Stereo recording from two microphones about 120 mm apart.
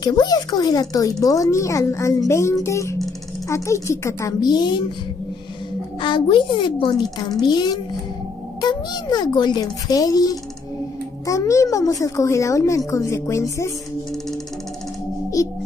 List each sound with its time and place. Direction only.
0.0 s a woman's voice: 35° left (ahead or behind)
5.9 s a woman's voice: 45° left (ahead or behind); by 13.7 s 25° left (ahead or behind)
15.4 s music: 30° left (ahead or behind)